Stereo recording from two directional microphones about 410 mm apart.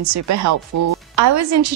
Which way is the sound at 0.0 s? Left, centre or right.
Right.